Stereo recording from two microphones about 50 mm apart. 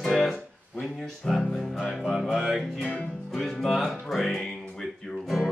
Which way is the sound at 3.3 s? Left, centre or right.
Centre.